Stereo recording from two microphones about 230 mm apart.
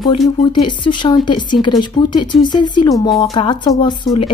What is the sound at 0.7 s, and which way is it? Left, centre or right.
A woman's voice, centre.